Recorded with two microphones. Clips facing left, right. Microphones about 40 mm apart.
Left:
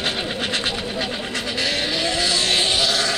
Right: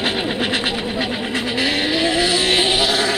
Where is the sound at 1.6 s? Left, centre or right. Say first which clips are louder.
Right 4 dB; centre.